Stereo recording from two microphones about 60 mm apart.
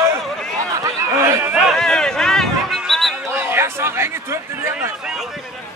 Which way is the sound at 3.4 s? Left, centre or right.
Right.